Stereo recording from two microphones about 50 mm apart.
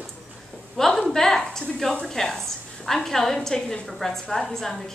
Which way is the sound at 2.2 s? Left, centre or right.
Centre.